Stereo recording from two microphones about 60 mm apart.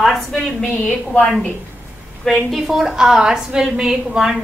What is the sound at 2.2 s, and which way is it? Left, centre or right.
A woman's voice, centre.